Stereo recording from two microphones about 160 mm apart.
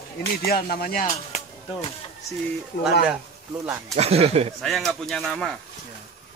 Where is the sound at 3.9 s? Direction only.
40° right (ahead or behind).